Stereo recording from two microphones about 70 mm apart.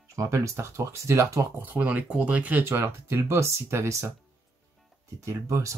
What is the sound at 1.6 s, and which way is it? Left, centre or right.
Speech, right.